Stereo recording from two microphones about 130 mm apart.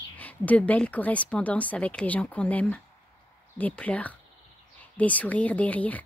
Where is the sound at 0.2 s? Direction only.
10° left (ahead or behind).